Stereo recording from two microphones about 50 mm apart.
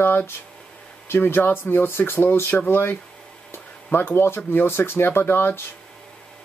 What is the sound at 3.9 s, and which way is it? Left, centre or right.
Speech, left.